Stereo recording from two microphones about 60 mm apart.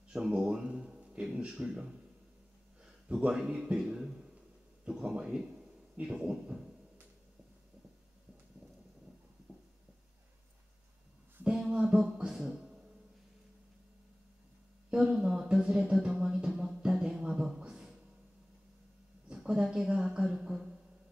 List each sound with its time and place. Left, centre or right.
0.1 s speech: centre
0.7 s music: centre
2.8 s a sound: centre
3.3 s speech: centre
11.4 s music: centre
14.9 s speech: centre
17.3 s a sound: centre
19.3 s a woman's voice: centre